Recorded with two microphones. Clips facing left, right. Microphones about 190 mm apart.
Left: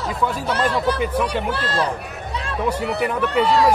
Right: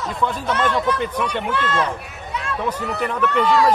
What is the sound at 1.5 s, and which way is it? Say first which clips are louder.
Speech: right 1 dB; 35° left (ahead or behind).